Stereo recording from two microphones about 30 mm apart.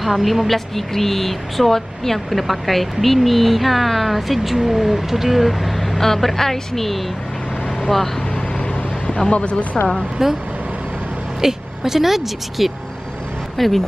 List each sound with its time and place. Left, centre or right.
0.0 s speech: centre
8.5 s vehicle: left
9.3 s speech: left
10.2 s speech: centre
11.4 s speech: centre
13.6 s speech: centre